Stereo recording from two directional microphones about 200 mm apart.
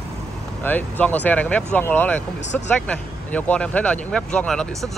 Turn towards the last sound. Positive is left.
turn(degrees=5)  # may be behind; listen again after turning